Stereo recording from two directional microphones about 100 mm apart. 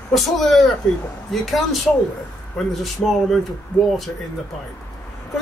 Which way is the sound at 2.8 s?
Centre (ahead or behind).